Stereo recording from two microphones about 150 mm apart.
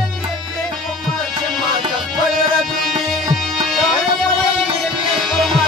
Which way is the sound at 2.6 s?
Centre (ahead or behind).